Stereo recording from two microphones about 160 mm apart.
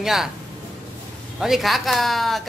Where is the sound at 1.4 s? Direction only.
Centre (ahead or behind).